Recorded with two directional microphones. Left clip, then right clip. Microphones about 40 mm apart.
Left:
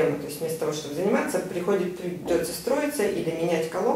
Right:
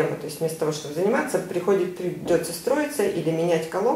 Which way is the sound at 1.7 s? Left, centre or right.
Right.